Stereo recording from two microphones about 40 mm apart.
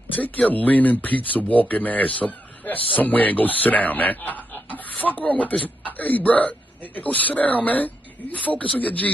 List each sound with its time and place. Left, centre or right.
0.2 s speech: left